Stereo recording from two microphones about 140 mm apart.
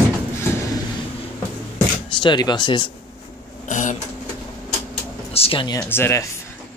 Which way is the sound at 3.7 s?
65° left (ahead or behind).